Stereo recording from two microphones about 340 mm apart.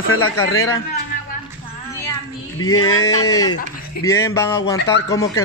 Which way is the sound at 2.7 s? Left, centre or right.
Left.